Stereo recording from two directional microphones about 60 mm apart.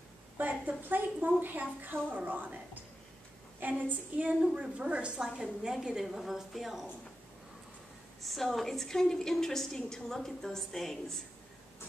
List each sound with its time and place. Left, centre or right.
0.4 s a woman's voice: right; by 6.9 s centre
8.2 s a woman's voice: centre